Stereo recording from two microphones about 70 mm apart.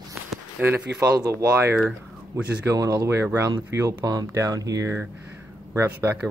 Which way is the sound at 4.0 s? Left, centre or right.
Right.